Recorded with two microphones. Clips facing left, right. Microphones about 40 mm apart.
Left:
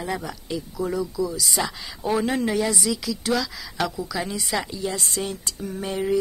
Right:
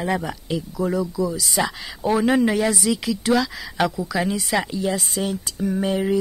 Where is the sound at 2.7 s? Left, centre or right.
Right.